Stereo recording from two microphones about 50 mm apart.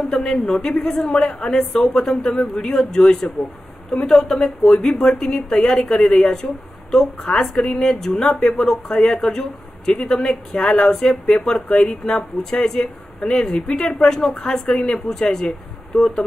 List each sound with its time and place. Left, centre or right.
0.1 s speech: centre